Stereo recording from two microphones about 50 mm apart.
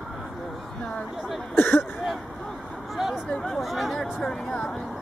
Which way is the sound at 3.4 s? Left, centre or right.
Centre.